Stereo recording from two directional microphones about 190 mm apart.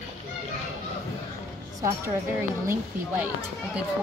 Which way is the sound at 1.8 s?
15° right (ahead or behind).